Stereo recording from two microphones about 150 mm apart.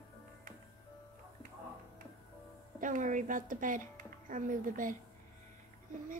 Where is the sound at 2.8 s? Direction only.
60° right (ahead or behind).